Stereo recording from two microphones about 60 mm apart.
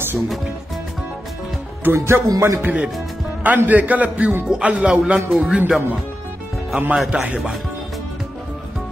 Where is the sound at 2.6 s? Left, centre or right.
Centre.